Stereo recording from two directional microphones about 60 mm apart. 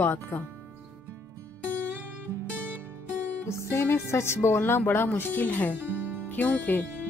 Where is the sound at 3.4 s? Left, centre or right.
Left.